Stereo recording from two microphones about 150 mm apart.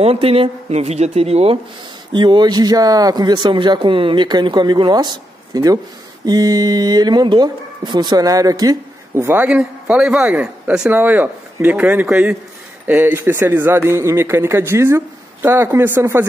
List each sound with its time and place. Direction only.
0.0 s speech: 40° right (ahead or behind)
2.1 s speech: 30° right (ahead or behind)